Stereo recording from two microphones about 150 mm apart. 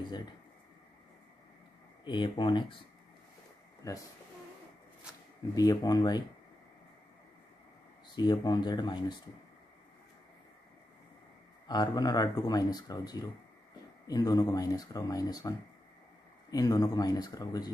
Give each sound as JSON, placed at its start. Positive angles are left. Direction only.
{"t": 2.0, "sound": "speech", "side_deg": 30}
{"t": 3.8, "sound": "speech", "side_deg": 25}
{"t": 5.5, "sound": "speech", "side_deg": 25}
{"t": 8.2, "sound": "speech", "side_deg": 30}
{"t": 11.6, "sound": "speech", "side_deg": 25}